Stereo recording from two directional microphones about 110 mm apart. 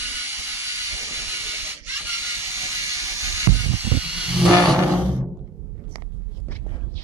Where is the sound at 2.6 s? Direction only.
25° right (ahead or behind).